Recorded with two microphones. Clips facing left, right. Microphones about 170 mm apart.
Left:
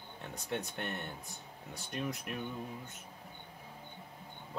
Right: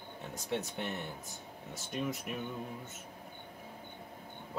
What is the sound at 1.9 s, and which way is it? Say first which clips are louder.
Speech: right 2 dB; centre (ahead or behind).